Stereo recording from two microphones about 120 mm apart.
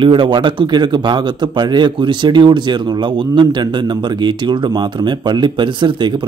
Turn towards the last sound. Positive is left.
turn(degrees=-40)  # may be behind; listen again after turning